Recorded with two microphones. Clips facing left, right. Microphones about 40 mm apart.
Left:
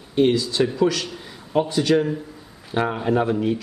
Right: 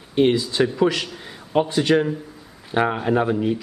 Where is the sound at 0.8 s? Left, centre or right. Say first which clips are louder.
Right 1 dB; right.